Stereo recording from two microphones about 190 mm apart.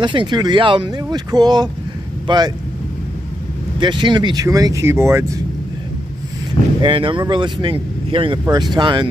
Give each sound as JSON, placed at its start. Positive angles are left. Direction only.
{"t": 0.0, "sound": "speech", "side_deg": -25}
{"t": 3.8, "sound": "speech", "side_deg": -25}
{"t": 6.8, "sound": "speech", "side_deg": -25}